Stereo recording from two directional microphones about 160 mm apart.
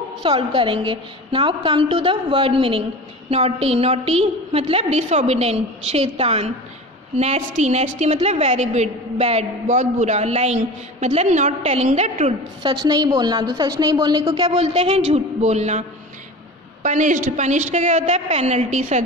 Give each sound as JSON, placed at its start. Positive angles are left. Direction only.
{"t": 0.2, "sound": "a woman's voice", "side_deg": -35}
{"t": 12.8, "sound": "a woman's voice", "side_deg": -25}
{"t": 14.6, "sound": "a woman's voice", "side_deg": -40}
{"t": 16.8, "sound": "a woman's voice", "side_deg": -50}